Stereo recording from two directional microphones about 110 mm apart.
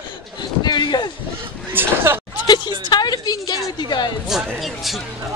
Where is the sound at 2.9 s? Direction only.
40° left (ahead or behind).